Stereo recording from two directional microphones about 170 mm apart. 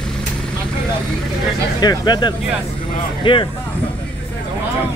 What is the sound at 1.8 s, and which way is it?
Speech, 25° left (ahead or behind).